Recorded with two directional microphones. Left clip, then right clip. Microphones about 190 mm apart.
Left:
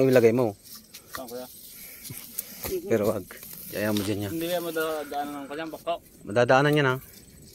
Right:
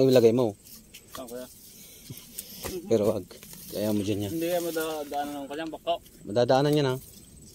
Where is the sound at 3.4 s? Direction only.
25° left (ahead or behind).